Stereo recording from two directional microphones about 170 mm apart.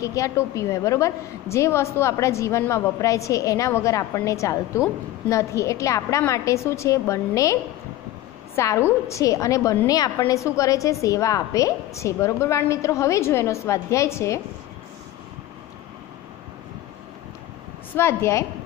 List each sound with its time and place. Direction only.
0.0 s a woman's voice: 20° left (ahead or behind)
8.5 s a woman's voice: 15° left (ahead or behind)
17.9 s a woman's voice: 15° left (ahead or behind)